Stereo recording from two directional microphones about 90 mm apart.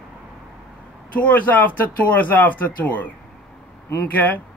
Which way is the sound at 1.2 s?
15° left (ahead or behind).